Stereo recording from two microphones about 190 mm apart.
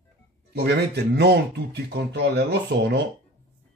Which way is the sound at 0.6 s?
60° right (ahead or behind).